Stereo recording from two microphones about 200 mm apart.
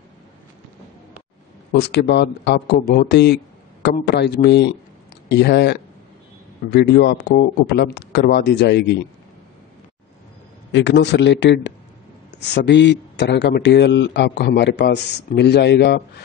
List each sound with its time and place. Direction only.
1.7 s speech: 55° left (ahead or behind)
10.7 s speech: 65° left (ahead or behind)